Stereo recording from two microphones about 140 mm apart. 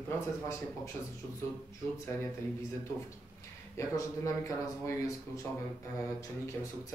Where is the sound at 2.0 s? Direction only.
20° left (ahead or behind).